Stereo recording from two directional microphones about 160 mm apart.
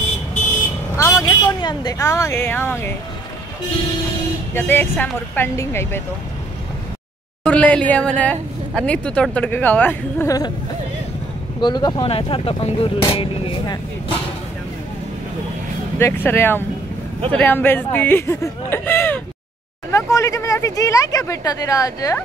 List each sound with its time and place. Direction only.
0.9 s speech: 20° left (ahead or behind)
4.6 s speech: 10° left (ahead or behind)
7.4 s speech: 10° left (ahead or behind)
11.6 s speech: 25° left (ahead or behind)
16.0 s speech: 15° left (ahead or behind)